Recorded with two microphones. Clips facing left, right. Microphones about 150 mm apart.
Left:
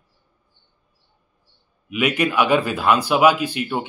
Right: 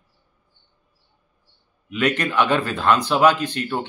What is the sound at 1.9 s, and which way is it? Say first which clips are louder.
Speech: left 1 dB; 10° left (ahead or behind).